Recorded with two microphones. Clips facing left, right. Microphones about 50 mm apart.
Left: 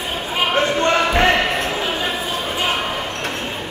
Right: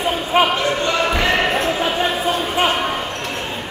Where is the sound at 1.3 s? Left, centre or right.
Right.